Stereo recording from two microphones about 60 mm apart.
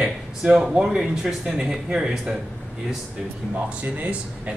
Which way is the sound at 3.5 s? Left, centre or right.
Right.